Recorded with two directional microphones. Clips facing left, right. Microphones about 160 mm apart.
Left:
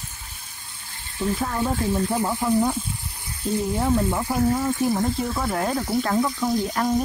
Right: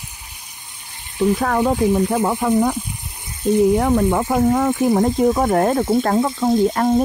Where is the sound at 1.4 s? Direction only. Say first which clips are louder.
Right 7 dB; 90° right.